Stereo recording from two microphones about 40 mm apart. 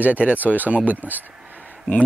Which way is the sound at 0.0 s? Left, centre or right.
Right.